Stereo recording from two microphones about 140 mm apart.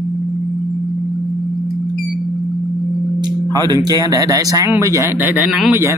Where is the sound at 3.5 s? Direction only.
30° right (ahead or behind); by 5.7 s 5° right (ahead or behind).